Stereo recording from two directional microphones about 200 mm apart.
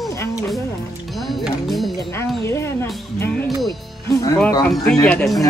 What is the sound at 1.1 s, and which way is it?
Music, centre (ahead or behind).